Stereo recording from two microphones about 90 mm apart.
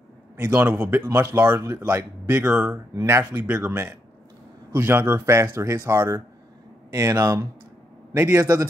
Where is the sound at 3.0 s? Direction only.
30° right (ahead or behind).